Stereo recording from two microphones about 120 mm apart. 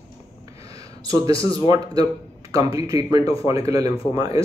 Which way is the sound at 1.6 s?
35° right (ahead or behind).